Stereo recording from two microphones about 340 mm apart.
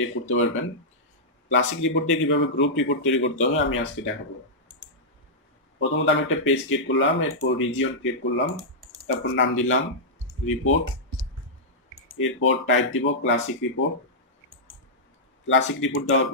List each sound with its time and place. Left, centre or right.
0.0 s speech: left
5.8 s speech: left
12.2 s speech: left
15.4 s speech: left